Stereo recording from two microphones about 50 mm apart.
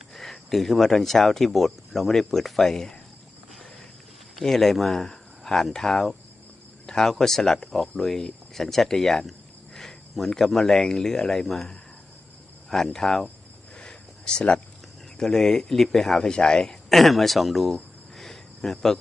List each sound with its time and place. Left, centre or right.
0.1 s speech: centre
4.4 s speech: centre
13.7 s a sound: centre
15.1 s speech: centre
16.9 s speech: centre
18.1 s cricket: centre